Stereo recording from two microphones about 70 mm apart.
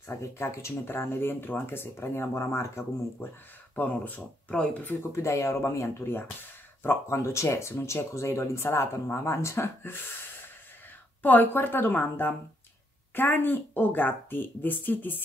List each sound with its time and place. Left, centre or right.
0.1 s speech: left
3.7 s a woman's voice: left
5.1 s speech: left
11.2 s a woman's voice: left